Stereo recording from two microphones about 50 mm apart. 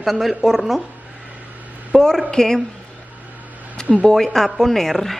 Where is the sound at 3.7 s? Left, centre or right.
Left.